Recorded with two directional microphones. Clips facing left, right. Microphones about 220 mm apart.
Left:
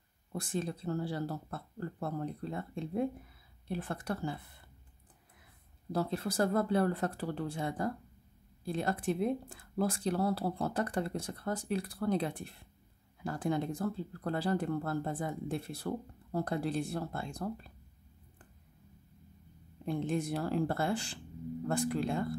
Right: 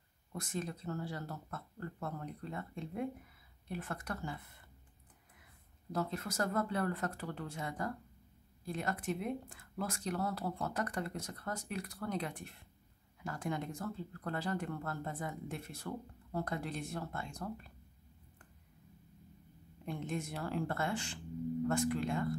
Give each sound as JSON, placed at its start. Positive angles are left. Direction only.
{"t": 0.3, "sound": "speech", "side_deg": 30}
{"t": 5.9, "sound": "speech", "side_deg": 30}
{"t": 19.8, "sound": "speech", "side_deg": 35}